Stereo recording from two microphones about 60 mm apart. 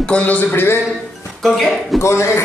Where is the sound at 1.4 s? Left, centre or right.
Centre.